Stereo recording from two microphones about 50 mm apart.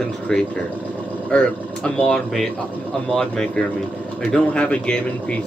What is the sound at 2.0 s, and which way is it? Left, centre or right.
Speech, centre.